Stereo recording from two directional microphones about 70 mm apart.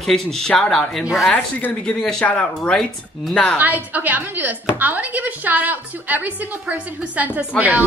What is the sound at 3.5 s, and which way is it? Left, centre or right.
Speech, right.